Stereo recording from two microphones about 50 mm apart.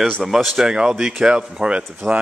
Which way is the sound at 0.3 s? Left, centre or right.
Centre.